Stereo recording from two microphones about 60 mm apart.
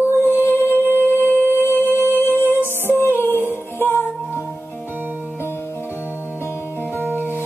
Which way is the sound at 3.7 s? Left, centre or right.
Left.